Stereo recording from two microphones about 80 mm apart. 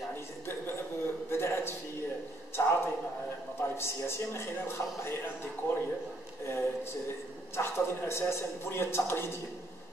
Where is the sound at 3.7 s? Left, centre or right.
Left.